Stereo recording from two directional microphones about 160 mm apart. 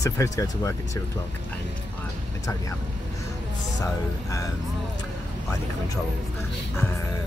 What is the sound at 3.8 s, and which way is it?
Speech, 20° left (ahead or behind).